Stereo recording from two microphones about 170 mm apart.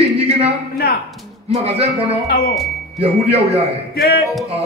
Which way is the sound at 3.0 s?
35° right (ahead or behind).